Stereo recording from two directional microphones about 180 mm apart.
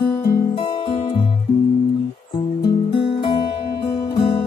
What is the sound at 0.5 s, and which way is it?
Music, 30° left (ahead or behind).